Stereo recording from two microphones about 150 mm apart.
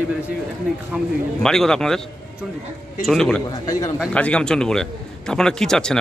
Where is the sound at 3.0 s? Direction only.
5° left (ahead or behind).